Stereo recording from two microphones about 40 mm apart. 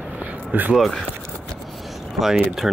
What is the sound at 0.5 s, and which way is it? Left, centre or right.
Speech, right.